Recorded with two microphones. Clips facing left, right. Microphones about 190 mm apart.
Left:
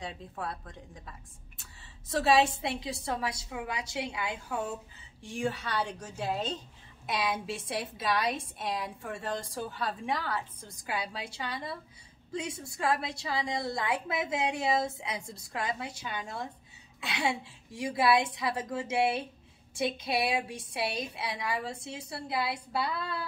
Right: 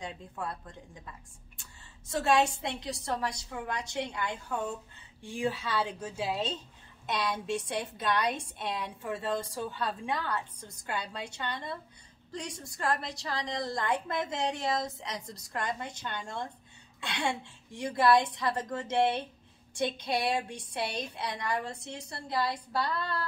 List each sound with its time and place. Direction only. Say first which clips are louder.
0.0 s a woman's voice: even; centre (ahead or behind)